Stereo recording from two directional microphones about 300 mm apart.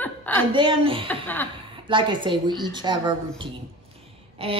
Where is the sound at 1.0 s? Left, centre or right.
Centre.